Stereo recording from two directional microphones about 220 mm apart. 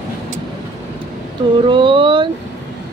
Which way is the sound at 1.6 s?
20° right (ahead or behind).